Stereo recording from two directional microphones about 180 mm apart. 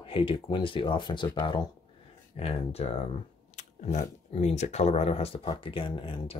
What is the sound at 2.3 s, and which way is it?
Speech, 35° left (ahead or behind).